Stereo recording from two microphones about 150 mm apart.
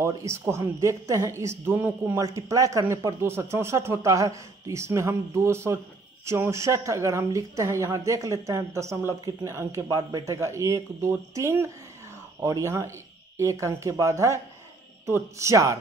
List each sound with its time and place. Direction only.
0.0 s speech: 20° right (ahead or behind)